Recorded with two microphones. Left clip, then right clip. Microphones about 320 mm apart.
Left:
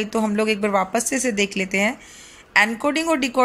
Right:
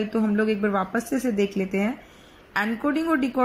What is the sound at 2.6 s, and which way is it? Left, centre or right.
Speech, centre.